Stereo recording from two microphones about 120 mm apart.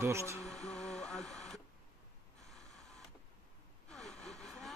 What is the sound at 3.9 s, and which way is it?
Gasp, 5° left (ahead or behind).